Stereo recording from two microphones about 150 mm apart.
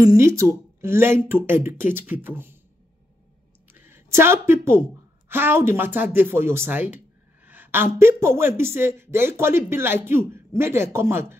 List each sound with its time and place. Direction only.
0.0 s speech: 20° right (ahead or behind)
3.7 s a woman's voice: 15° right (ahead or behind)